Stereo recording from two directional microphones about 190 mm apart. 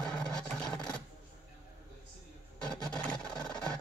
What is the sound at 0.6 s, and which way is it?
Filing, 20° left (ahead or behind).